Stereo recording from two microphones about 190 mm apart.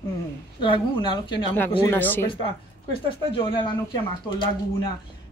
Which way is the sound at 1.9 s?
10° left (ahead or behind).